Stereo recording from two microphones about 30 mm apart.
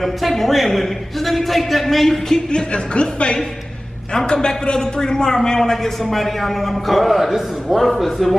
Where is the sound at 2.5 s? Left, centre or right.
Left.